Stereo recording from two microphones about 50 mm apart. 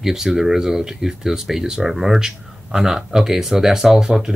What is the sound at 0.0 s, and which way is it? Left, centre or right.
Speech, centre.